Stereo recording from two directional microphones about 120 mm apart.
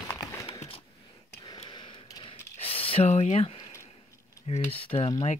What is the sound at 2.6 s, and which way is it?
Speech, 50° left (ahead or behind).